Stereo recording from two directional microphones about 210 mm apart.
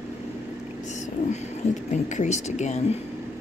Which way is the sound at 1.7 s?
35° left (ahead or behind).